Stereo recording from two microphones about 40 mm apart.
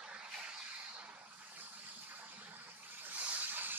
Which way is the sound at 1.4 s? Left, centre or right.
Right.